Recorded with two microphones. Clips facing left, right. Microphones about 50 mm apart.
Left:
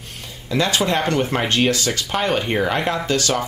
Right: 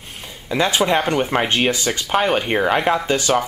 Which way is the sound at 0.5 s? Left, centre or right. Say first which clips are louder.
Right 2 dB; centre.